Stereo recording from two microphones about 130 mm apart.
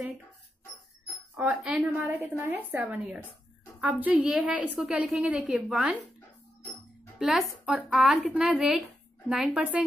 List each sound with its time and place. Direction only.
1.3 s a woman's voice: 10° right (ahead or behind)
7.2 s a woman's voice: centre (ahead or behind)